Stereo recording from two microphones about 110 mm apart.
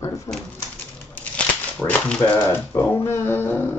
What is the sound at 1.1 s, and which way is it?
Speech, 10° left (ahead or behind).